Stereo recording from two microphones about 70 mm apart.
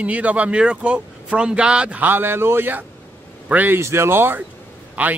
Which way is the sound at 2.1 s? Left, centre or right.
Right.